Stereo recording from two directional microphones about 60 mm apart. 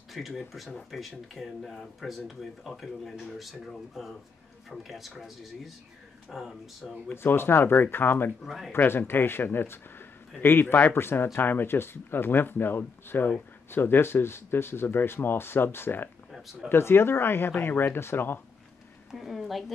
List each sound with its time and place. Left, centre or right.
0.1 s speech: centre
7.1 s speech: left
8.5 s speech: centre
8.7 s speech: left
19.1 s speech: centre